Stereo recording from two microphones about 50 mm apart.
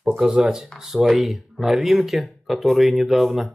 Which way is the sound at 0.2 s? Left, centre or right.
Centre.